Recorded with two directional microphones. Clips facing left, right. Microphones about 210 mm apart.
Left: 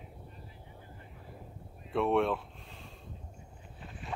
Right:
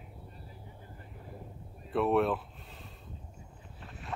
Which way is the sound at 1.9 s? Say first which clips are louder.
Right 1 dB; centre (ahead or behind).